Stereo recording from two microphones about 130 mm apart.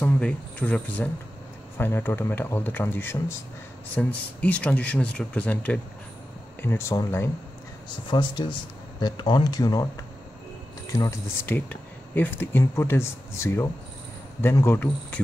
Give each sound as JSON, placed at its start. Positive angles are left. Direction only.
{"t": 0.0, "sound": "speech", "side_deg": 10}
{"t": 8.1, "sound": "speech", "side_deg": 35}
{"t": 11.4, "sound": "speech", "side_deg": 15}